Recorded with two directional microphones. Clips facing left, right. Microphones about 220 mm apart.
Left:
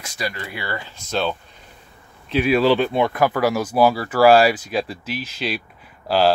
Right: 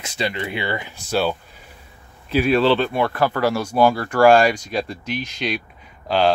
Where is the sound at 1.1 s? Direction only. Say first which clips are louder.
Right 2 dB; 10° right (ahead or behind).